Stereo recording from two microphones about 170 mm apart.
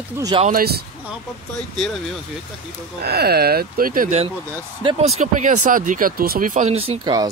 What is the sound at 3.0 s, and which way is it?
Speech, 65° right (ahead or behind).